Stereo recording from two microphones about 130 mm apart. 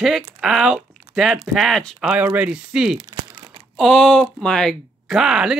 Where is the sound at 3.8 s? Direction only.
5° left (ahead or behind).